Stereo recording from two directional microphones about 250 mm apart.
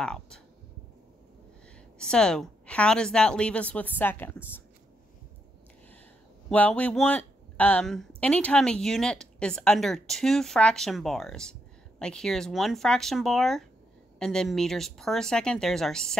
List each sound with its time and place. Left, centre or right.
0.0 s speech: centre
2.0 s a woman's voice: centre
6.5 s speech: centre